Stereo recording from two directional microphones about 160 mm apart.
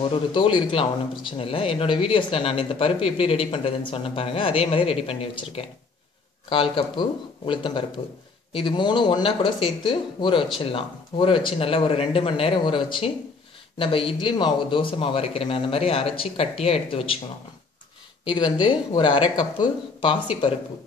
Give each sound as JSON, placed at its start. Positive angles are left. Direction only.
{"t": 0.0, "sound": "speech", "side_deg": 30}
{"t": 18.2, "sound": "speech", "side_deg": 30}